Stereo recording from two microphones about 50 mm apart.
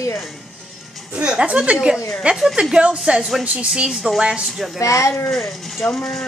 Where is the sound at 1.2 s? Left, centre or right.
Centre.